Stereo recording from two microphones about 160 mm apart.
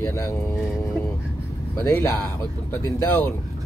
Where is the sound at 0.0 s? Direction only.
15° left (ahead or behind).